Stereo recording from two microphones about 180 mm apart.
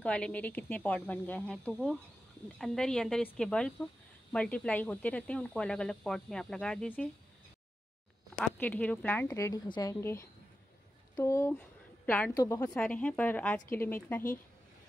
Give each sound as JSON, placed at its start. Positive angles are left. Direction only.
{"t": 0.0, "sound": "a woman's voice", "side_deg": 5}
{"t": 8.4, "sound": "a woman's voice", "side_deg": 10}